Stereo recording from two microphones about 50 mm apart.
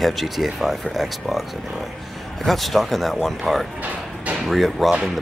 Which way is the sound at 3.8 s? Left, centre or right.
Right.